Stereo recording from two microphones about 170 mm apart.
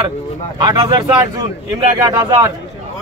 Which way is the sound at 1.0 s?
20° right (ahead or behind).